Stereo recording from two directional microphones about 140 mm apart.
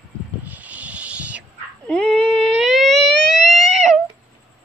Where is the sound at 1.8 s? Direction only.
5° left (ahead or behind).